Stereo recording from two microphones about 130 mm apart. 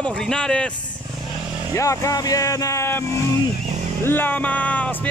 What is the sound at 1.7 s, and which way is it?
Speech, 25° left (ahead or behind).